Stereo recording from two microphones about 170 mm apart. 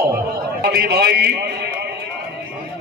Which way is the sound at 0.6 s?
65° right (ahead or behind).